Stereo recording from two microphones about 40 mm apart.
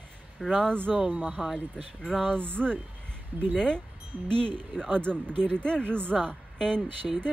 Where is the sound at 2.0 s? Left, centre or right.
Centre.